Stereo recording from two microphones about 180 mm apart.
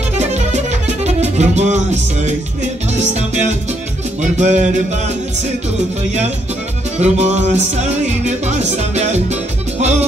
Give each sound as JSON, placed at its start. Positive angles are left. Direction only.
{"t": 0.2, "sound": "music", "side_deg": -40}
{"t": 7.0, "sound": "music", "side_deg": -40}